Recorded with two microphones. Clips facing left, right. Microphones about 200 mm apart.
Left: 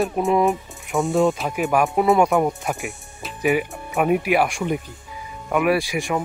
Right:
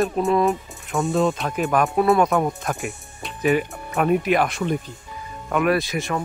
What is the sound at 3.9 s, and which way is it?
Speech, 10° left (ahead or behind).